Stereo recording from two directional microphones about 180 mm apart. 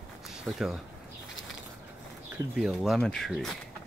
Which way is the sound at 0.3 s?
Centre (ahead or behind).